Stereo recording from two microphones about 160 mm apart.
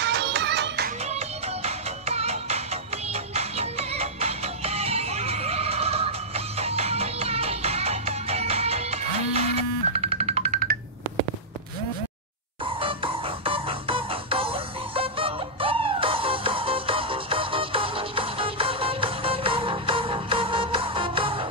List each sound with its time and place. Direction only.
0.0 s music: 90° right
1.6 s music: 40° right (ahead or behind)
12.6 s music: 35° right (ahead or behind)